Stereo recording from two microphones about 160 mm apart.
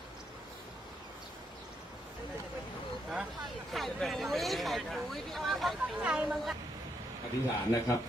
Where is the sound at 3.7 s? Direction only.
Centre (ahead or behind).